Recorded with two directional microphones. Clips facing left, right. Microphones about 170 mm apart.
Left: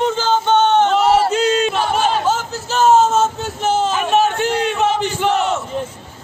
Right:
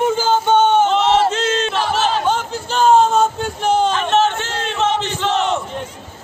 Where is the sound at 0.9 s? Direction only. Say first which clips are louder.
Left 1 dB; 10° left (ahead or behind).